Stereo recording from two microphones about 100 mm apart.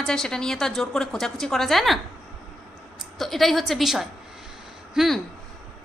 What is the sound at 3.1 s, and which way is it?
A woman's voice, centre (ahead or behind).